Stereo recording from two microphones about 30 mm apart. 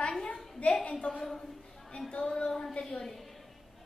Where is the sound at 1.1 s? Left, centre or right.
Left.